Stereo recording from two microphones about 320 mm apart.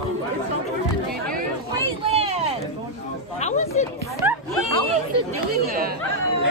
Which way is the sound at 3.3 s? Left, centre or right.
Centre.